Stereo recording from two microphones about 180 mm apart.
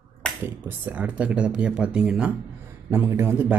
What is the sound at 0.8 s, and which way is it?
Speech, 10° right (ahead or behind).